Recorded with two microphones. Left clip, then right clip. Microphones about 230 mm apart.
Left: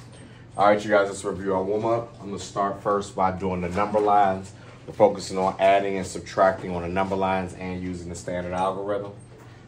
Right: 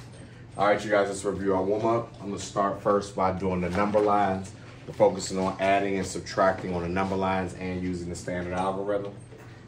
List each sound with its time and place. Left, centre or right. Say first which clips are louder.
0.6 s speech: left 4 dB; left
4.9 s speech: left 3 dB; left